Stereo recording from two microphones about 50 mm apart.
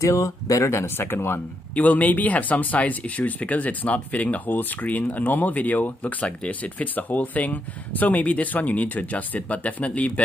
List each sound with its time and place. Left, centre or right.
0.0 s speech: left
1.8 s speech: left